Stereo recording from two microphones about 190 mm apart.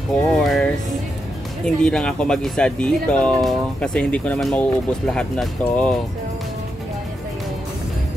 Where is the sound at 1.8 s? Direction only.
5° left (ahead or behind).